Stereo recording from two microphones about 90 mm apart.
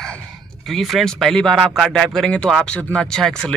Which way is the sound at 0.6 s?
Centre (ahead or behind).